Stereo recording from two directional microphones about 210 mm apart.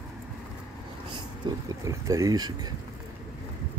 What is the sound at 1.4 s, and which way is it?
Speech, 20° right (ahead or behind).